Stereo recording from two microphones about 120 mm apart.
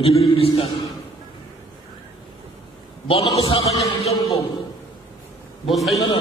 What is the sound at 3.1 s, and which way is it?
Speech, 55° left (ahead or behind).